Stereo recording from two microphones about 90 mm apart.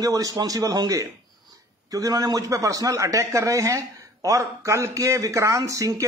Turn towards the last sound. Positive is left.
turn(degrees=-40)  # may be behind; listen again after turning